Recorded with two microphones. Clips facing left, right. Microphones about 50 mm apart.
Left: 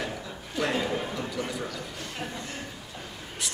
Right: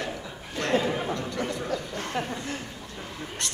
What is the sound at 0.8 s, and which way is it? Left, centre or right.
Speech, centre.